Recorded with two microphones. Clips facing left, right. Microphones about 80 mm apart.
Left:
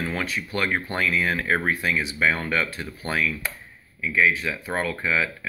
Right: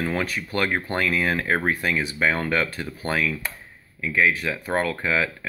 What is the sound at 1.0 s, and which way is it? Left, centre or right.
Speech, right.